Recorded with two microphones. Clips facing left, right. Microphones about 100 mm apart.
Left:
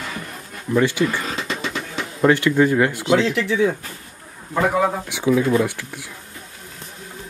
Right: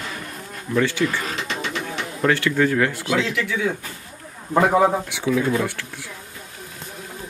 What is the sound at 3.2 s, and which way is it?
Speech, 30° left (ahead or behind).